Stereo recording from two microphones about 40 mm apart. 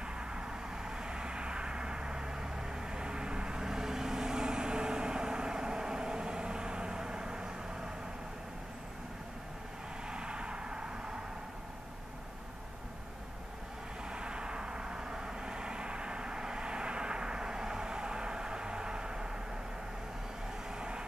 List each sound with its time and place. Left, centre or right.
0.0 s vehicle: right
10.0 s vehicle: right
14.1 s vehicle: right